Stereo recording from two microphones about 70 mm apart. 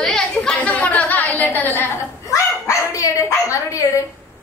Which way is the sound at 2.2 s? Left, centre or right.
Left.